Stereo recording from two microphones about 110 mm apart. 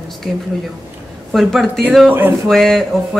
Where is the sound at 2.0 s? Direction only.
20° right (ahead or behind).